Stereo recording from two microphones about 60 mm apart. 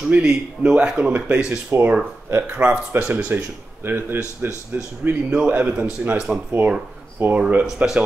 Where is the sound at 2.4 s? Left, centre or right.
Right.